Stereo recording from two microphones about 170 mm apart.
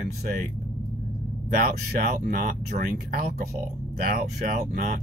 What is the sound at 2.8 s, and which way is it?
Speech, 55° right (ahead or behind).